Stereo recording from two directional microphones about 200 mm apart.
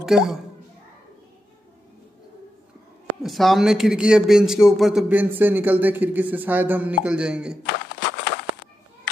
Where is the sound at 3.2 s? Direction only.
Centre (ahead or behind).